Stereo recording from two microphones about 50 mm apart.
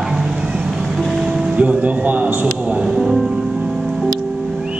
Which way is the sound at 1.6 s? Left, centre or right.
Right.